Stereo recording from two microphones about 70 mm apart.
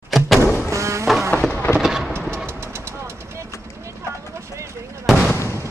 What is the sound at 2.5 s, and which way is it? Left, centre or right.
Vehicle, right.